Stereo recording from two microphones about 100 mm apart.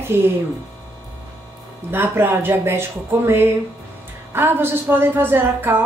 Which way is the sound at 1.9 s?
20° right (ahead or behind).